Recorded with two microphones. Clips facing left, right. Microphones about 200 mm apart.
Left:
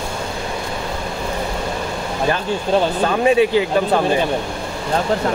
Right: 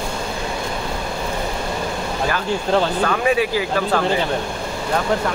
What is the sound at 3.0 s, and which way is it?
Speech, 25° left (ahead or behind).